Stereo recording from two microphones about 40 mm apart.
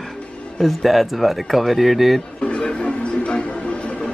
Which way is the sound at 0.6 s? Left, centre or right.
Centre.